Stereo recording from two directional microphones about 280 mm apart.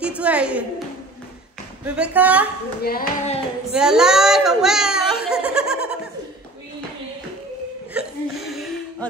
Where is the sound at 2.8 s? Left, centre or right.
Left.